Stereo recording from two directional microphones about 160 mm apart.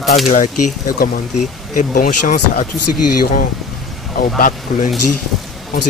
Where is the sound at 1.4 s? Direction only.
55° left (ahead or behind).